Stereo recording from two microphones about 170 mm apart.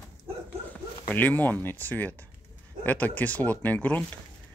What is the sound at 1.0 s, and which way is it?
Speech, 10° left (ahead or behind).